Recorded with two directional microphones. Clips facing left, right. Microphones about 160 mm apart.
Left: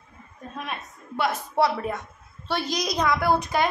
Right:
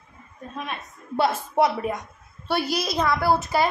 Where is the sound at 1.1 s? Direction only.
30° right (ahead or behind).